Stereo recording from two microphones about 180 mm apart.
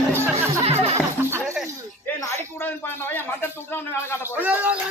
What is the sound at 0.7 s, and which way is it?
Music, 35° right (ahead or behind).